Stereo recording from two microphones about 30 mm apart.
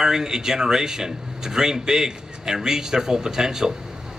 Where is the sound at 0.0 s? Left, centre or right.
Right.